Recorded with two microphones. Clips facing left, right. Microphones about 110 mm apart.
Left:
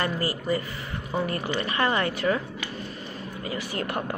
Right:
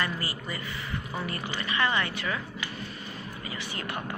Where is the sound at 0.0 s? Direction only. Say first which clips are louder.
Left 5 dB; 40° left (ahead or behind).